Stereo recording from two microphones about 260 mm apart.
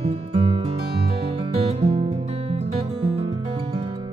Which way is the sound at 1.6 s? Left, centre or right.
Right.